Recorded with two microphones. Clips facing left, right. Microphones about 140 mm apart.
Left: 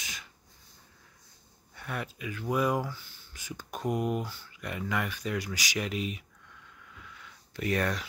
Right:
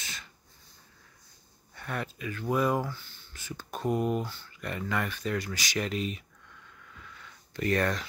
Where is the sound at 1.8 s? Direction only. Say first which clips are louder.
Right 2 dB; 5° left (ahead or behind).